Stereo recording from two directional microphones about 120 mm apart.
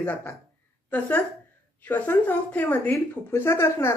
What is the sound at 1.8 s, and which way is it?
Speech, 15° left (ahead or behind).